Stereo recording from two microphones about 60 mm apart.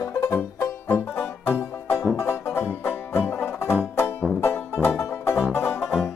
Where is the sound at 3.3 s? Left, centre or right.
Left.